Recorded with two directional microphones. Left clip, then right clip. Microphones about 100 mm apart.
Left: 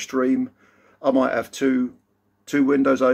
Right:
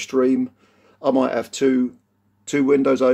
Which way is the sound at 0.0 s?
20° right (ahead or behind).